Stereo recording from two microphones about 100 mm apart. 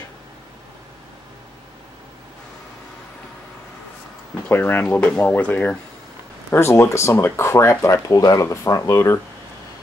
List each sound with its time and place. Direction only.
4.5 s speech: 20° left (ahead or behind)
6.5 s speech: 25° left (ahead or behind)